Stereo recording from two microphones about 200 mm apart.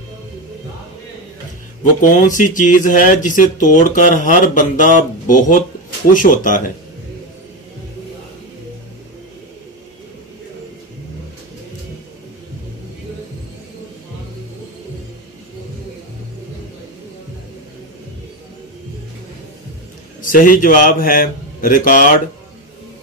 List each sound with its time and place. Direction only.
2.0 s speech: 40° left (ahead or behind)
20.2 s a man's voice: 45° left (ahead or behind)